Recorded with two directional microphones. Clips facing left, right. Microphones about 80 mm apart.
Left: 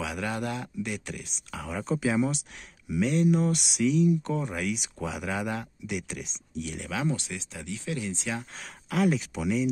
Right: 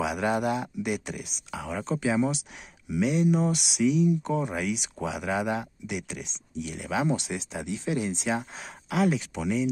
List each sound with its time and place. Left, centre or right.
0.0 s speech: centre
6.9 s speech: centre
8.5 s speech: centre